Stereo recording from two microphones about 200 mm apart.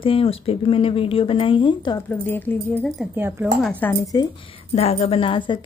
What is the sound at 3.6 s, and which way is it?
A woman's voice, 10° left (ahead or behind).